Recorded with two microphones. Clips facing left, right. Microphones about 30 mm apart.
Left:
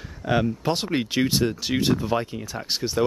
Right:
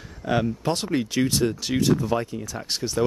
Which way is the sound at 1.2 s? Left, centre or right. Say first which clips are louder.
Left 1 dB; centre.